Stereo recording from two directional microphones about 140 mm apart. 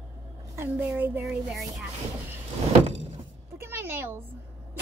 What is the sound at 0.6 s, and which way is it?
Speech, 15° right (ahead or behind).